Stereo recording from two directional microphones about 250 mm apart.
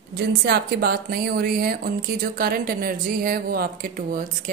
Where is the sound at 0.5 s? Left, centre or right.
Right.